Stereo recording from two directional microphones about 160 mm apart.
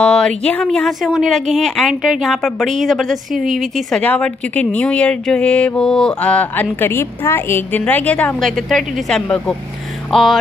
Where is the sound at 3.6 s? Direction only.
Centre (ahead or behind).